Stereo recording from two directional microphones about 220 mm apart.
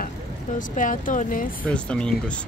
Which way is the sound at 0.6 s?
35° left (ahead or behind).